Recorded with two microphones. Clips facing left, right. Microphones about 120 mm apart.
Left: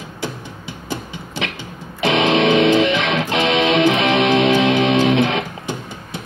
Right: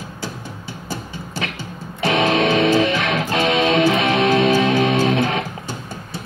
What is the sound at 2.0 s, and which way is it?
Music, 20° left (ahead or behind).